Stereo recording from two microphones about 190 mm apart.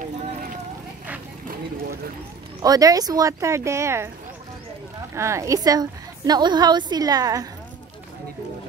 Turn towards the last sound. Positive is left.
turn(degrees=-20)  # may be behind; listen again after turning